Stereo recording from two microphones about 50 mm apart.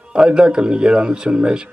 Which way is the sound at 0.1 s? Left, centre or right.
Centre.